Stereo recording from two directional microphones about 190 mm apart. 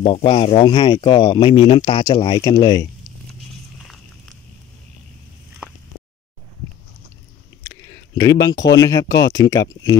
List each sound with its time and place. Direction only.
0.0 s speech: 30° left (ahead or behind)
7.7 s a sound: 15° left (ahead or behind)
8.7 s speech: 20° left (ahead or behind)